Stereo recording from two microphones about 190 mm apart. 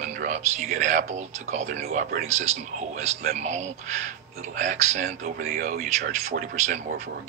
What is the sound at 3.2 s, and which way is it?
Speech, 35° right (ahead or behind).